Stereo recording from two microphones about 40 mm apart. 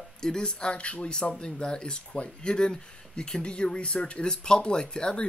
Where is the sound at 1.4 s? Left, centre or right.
Left.